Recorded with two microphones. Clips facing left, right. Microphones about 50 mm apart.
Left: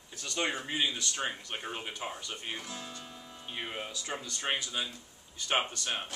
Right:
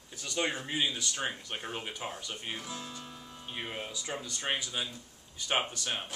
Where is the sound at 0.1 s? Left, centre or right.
Centre.